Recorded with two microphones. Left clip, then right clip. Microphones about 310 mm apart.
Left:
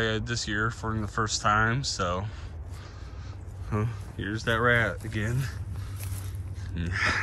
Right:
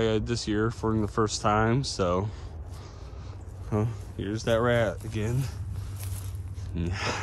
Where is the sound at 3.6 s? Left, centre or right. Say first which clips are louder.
Right 2 dB; centre.